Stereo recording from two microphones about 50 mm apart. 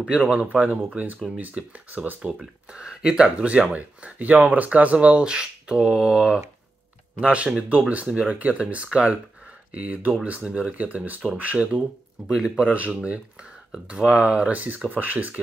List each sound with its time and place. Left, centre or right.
0.3 s speech: right
2.7 s speech: centre; by 11.6 s right
12.3 s speech: centre; by 15.4 s right